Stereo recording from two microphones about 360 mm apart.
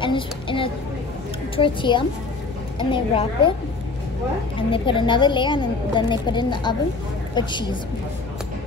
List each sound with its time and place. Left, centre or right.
0.0 s a sound: centre
1.6 s a woman's voice: centre
4.6 s a woman's voice: centre